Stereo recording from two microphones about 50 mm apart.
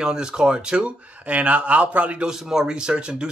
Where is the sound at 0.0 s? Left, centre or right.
Centre.